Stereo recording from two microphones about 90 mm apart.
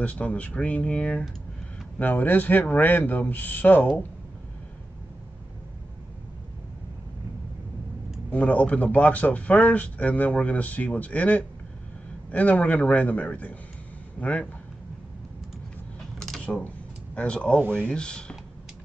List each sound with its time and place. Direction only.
0.0 s speech: 15° left (ahead or behind)
8.3 s speech: 15° left (ahead or behind)
16.2 s a sound: 5° left (ahead or behind)
16.5 s speech: 15° left (ahead or behind)